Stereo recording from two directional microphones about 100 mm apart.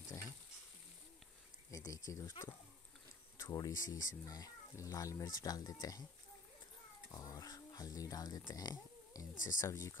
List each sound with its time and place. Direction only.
0.1 s frying: 25° left (ahead or behind)
1.7 s speech: 35° left (ahead or behind)
3.5 s speech: 35° left (ahead or behind)
7.1 s speech: 35° left (ahead or behind)
9.6 s speech: 30° left (ahead or behind)